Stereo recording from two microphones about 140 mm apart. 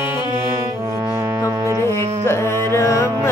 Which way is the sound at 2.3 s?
20° left (ahead or behind).